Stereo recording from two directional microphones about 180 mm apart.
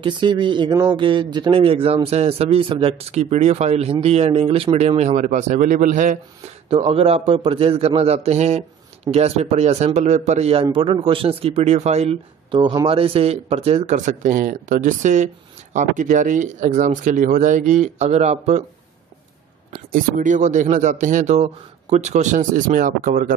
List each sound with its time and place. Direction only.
0.0 s a man's voice: 25° right (ahead or behind); by 6.1 s 45° right (ahead or behind)
6.7 s a man's voice: 35° right (ahead or behind)
19.7 s speech: 50° right (ahead or behind)